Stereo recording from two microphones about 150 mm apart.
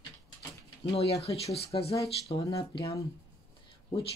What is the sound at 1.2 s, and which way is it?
Speech, 45° left (ahead or behind).